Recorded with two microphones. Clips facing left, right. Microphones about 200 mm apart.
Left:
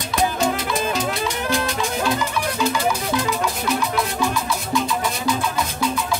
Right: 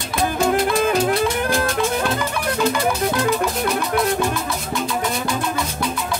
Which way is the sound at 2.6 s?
55° right (ahead or behind).